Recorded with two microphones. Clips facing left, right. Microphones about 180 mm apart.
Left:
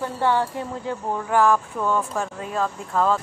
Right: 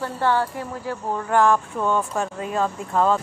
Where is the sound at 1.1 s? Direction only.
5° left (ahead or behind).